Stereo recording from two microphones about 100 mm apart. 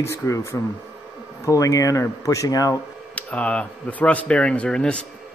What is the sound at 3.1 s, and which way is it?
Speech, 10° left (ahead or behind).